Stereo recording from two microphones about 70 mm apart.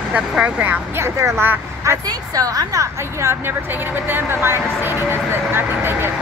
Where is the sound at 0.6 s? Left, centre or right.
Right.